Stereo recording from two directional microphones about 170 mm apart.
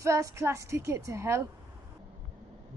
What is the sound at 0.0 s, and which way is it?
A woman's voice, 15° right (ahead or behind).